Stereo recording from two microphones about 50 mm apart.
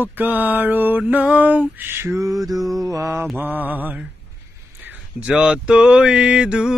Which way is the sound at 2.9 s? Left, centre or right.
Right.